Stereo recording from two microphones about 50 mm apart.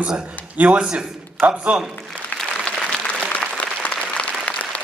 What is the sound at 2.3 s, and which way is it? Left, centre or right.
Applause, left.